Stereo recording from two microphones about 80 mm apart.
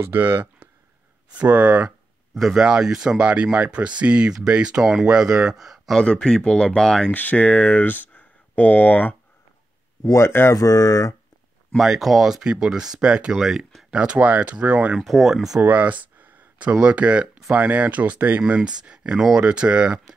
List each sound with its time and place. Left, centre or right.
0.0 s speech: right; by 5.9 s centre
5.9 s speech: centre
7.1 s speech: left
10.1 s speech: left
10.5 s speech: left
11.7 s speech: centre
15.0 s speech: centre
15.6 s a sound: centre
16.7 s speech: centre